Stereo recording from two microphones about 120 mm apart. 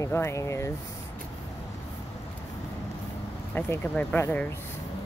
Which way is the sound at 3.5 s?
15° left (ahead or behind).